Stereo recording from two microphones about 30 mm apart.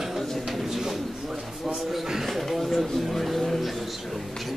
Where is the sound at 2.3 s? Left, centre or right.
Centre.